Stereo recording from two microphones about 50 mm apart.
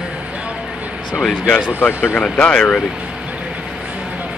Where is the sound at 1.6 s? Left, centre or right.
Left.